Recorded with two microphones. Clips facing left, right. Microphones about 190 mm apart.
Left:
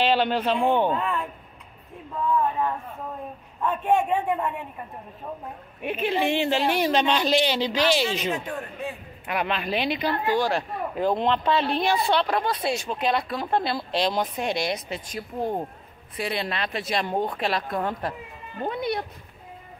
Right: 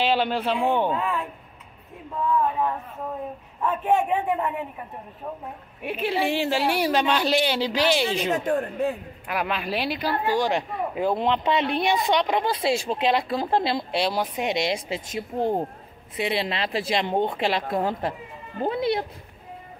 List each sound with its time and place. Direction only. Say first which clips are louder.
0.0 s speech: left 1 dB; 10° right (ahead or behind)
3.6 s a man's voice: even; 5° right (ahead or behind)
5.8 s speech: even; 10° right (ahead or behind)
8.3 s speech: right 6 dB; 50° right (ahead or behind)
9.3 s speech: left 1 dB; 5° right (ahead or behind); by 13.8 s 25° right (ahead or behind)
13.9 s speech: left 3 dB; 10° right (ahead or behind); by 19.0 s 25° right (ahead or behind)